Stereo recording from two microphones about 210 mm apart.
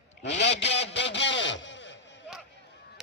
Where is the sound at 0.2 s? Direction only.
55° left (ahead or behind).